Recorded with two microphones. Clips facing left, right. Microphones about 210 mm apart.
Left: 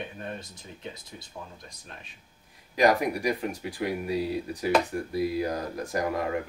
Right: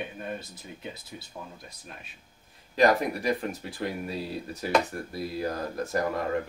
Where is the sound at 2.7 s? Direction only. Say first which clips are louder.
Even; 15° left (ahead or behind).